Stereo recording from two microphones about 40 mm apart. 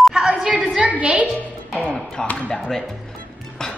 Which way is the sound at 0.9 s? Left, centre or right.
Right.